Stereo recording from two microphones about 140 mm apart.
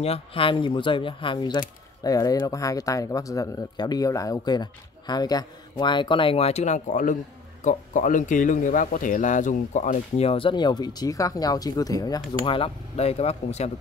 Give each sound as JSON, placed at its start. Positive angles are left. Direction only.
{"t": 0.0, "sound": "speech", "side_deg": 40}
{"t": 12.4, "sound": "speech", "side_deg": 40}